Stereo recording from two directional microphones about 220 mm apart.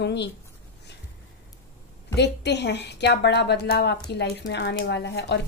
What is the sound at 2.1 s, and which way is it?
A woman's voice, 50° left (ahead or behind).